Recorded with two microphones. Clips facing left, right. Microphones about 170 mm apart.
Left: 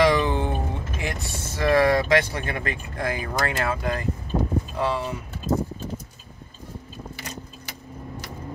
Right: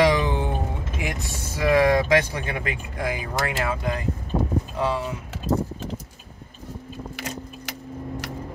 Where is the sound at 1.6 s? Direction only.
15° right (ahead or behind).